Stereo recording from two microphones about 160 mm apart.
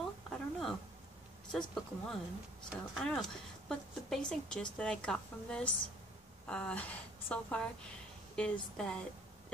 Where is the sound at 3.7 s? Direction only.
5° left (ahead or behind).